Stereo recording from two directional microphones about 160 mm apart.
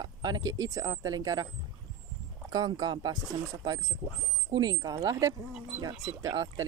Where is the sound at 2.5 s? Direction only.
25° right (ahead or behind).